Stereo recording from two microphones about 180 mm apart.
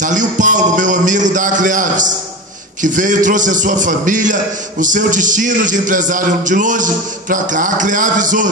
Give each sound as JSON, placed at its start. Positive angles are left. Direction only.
{"t": 0.0, "sound": "a man's voice", "side_deg": -45}